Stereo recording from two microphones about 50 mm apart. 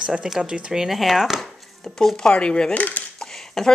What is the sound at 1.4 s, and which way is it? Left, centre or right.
Chopping, centre.